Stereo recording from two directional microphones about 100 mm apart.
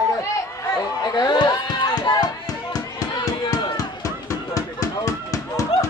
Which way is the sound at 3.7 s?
35° left (ahead or behind).